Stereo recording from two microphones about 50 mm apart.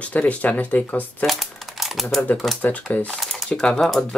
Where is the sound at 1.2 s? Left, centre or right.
Centre.